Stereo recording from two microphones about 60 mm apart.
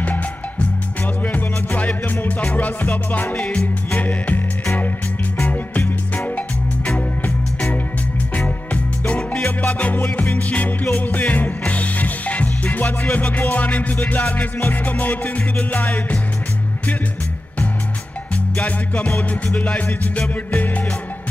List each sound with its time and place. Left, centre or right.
0.0 s music: left
5.4 s music: left
8.7 s music: left
18.3 s music: left